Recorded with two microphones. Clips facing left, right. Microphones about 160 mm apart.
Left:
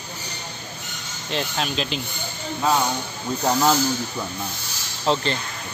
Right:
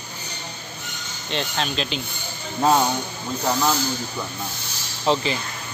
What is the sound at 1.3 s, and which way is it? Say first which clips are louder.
Speech: even; centre (ahead or behind).